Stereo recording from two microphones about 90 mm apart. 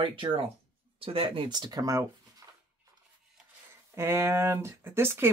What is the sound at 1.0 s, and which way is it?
Speech, 90° right.